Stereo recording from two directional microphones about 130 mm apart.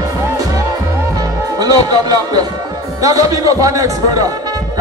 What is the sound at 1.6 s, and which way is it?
Music, 30° right (ahead or behind).